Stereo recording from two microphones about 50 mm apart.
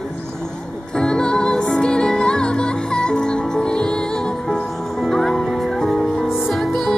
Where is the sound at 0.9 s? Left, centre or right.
Centre.